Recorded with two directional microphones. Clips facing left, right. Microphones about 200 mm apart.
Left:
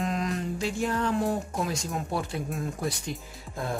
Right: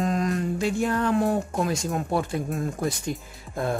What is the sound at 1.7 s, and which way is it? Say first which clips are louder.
Speech: right 5 dB; 50° right (ahead or behind).